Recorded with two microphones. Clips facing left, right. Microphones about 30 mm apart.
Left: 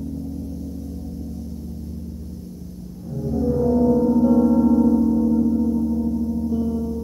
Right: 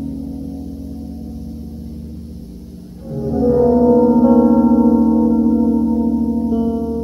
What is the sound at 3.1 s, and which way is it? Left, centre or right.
Music, right.